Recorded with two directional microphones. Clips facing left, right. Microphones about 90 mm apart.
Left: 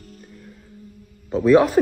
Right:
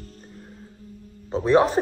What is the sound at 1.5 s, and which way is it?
Speech, 35° right (ahead or behind).